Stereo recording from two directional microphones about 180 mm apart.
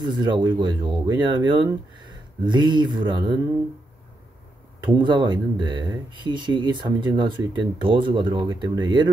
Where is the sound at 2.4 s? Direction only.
25° right (ahead or behind).